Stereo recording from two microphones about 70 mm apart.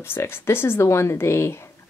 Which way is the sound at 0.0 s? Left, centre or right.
Left.